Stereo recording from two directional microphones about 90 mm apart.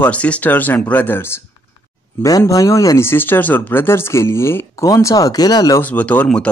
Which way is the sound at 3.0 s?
25° left (ahead or behind).